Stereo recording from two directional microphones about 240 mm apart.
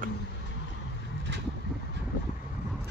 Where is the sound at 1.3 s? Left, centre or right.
Right.